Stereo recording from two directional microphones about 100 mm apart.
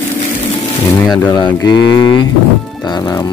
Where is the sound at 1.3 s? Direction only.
50° left (ahead or behind).